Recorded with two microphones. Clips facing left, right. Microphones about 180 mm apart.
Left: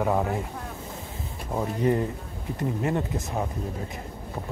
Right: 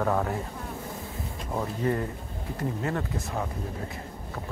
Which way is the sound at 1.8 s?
20° left (ahead or behind).